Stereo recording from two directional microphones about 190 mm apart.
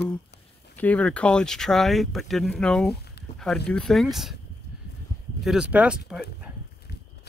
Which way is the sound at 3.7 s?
Centre (ahead or behind).